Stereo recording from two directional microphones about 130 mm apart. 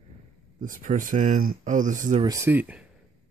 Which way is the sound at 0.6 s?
90° right.